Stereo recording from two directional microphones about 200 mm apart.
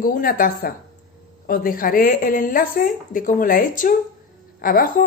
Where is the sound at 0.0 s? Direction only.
45° left (ahead or behind).